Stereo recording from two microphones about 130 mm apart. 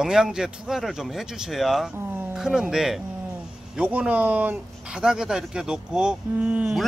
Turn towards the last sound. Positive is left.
turn(degrees=-5)  # may be behind; listen again after turning